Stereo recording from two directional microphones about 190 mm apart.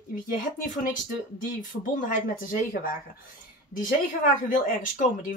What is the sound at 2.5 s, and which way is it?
Speech, 50° left (ahead or behind).